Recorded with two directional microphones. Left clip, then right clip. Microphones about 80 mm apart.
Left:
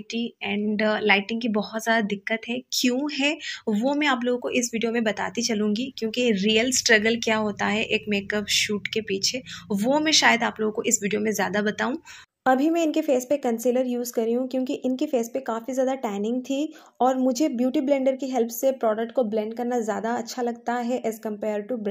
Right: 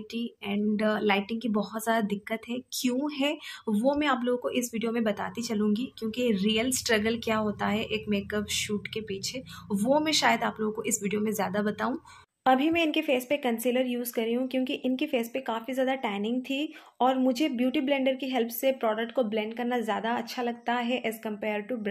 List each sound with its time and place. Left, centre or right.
0.1 s a woman's voice: centre
3.7 s a woman's voice: centre; by 21.6 s left